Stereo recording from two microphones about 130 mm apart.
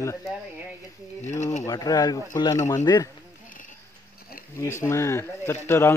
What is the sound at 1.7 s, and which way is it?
Speech, 30° left (ahead or behind).